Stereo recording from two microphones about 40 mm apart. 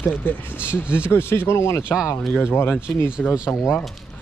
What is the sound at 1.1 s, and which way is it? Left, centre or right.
Speech, left.